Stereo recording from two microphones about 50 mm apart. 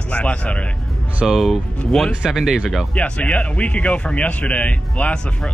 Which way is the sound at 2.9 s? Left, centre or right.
Left.